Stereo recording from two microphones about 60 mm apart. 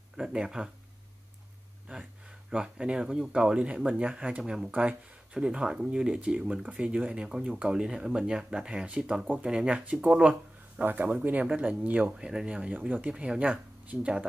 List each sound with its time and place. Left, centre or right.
0.2 s speech: centre
2.5 s speech: centre
10.8 s speech: right
12.1 s speech: centre
13.1 s speech: centre